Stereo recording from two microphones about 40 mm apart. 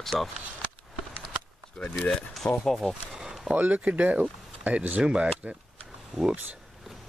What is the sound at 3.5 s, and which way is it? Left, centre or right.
Speech, right.